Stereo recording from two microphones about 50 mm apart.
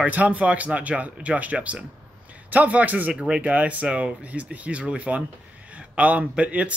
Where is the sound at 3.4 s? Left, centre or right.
Right.